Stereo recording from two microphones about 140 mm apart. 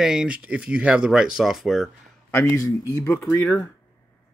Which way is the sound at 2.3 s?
20° left (ahead or behind).